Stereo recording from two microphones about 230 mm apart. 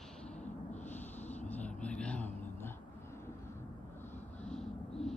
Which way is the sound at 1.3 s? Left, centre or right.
Centre.